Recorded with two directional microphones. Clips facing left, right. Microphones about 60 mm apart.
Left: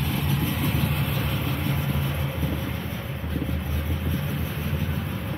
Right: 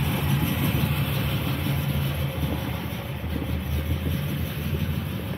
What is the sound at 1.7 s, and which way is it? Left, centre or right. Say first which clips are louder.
Vehicle: left 1 dB; centre.